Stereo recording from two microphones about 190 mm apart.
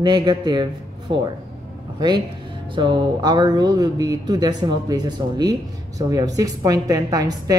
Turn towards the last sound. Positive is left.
turn(degrees=-20)  # may be behind; listen again after turning